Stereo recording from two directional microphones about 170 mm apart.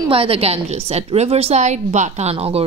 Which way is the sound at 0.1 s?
35° right (ahead or behind).